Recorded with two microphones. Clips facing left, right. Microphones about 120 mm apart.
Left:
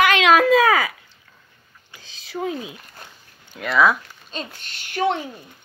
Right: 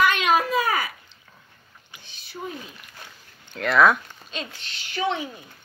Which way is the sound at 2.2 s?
90° left.